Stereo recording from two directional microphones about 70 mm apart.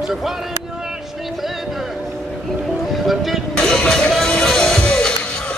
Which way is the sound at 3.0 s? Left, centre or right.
Centre.